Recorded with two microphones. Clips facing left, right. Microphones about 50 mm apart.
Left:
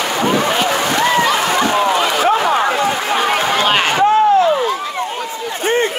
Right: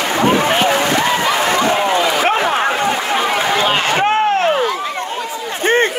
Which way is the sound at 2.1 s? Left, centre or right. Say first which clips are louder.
Left 1 dB; right.